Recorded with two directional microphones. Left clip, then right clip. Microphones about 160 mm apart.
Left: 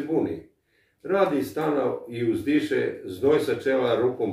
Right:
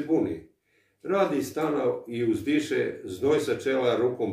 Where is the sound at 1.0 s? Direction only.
20° right (ahead or behind).